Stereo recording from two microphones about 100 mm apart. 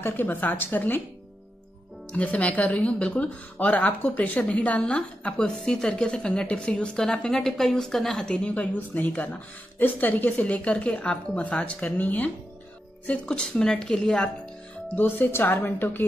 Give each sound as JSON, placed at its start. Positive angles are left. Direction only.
{"t": 0.0, "sound": "a woman's voice", "side_deg": 20}
{"t": 2.1, "sound": "speech", "side_deg": 15}
{"t": 15.0, "sound": "a woman's voice", "side_deg": 20}